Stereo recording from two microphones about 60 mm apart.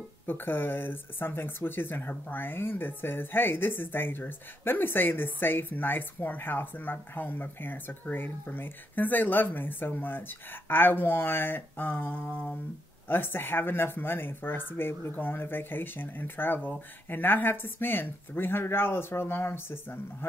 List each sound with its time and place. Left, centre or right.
0.3 s speech: left